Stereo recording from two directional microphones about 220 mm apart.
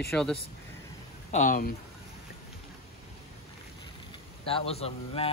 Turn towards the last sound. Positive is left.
turn(degrees=25)  # may be behind; listen again after turning